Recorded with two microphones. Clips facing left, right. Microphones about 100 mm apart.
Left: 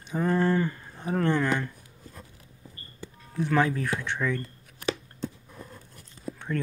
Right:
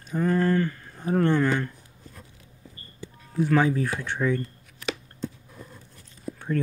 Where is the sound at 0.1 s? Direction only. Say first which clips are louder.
Right 2 dB; 5° left (ahead or behind).